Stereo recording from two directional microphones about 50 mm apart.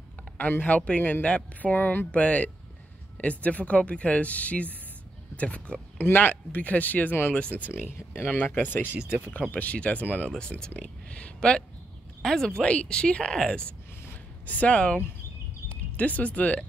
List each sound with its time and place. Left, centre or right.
0.4 s speech: left
2.1 s speech: left
5.9 s speech: left
7.8 s speech: left
9.4 s speech: left
12.2 s speech: centre
14.4 s speech: left